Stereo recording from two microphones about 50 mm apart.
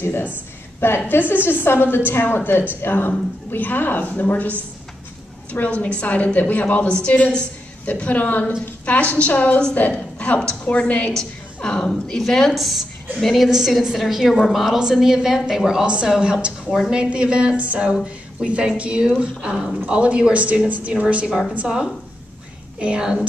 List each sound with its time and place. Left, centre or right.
0.0 s a woman's voice: left; by 12.2 s centre
12.2 s a woman's voice: centre
15.8 s a woman's voice: right